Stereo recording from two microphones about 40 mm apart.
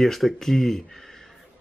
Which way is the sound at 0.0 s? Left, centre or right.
Centre.